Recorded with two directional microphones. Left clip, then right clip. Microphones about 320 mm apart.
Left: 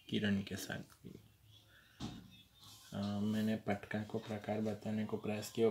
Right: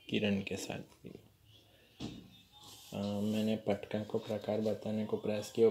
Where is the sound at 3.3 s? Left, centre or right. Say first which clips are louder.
Right 5 dB; centre.